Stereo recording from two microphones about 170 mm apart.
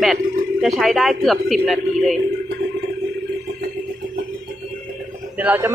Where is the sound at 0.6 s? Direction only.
Centre (ahead or behind).